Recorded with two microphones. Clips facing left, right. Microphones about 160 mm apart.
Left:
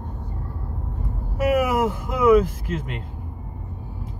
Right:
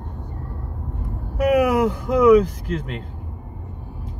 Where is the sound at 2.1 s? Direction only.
5° left (ahead or behind).